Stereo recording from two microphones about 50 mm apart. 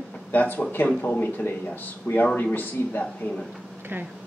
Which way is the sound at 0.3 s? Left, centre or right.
Left.